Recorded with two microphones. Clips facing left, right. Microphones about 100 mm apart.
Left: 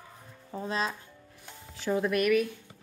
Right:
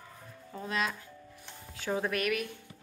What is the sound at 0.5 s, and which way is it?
Speech, 30° left (ahead or behind).